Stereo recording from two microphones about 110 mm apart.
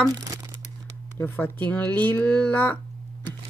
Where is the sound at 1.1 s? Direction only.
20° left (ahead or behind).